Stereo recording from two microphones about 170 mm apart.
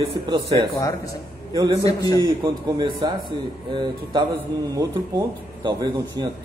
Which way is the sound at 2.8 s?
25° right (ahead or behind).